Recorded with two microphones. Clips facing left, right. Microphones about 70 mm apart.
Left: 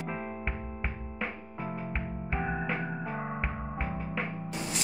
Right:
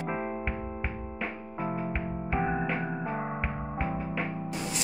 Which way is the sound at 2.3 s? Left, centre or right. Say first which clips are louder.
Right 3 dB; centre.